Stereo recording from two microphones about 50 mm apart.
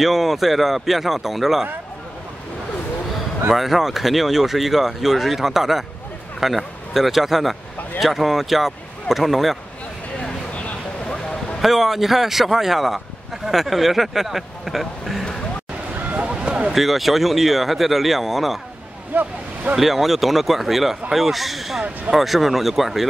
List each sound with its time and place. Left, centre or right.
0.0 s speech: centre
3.5 s speech: centre
10.1 s a sound: left
11.6 s speech: centre
16.3 s a sound: right
16.7 s speech: centre
19.1 s speech: right
19.7 s speech: centre